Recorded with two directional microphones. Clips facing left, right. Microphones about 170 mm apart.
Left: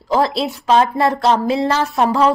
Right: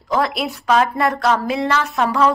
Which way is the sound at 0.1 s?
30° left (ahead or behind).